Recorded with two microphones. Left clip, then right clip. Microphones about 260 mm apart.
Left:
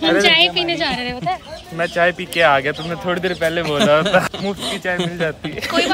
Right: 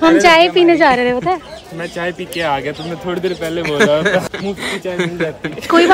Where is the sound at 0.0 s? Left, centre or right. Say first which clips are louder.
Right 5 dB; centre.